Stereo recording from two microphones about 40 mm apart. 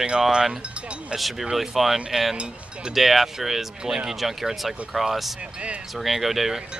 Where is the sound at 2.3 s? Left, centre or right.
Right.